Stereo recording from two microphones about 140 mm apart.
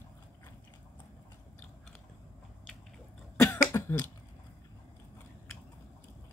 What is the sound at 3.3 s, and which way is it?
Cough, 20° left (ahead or behind).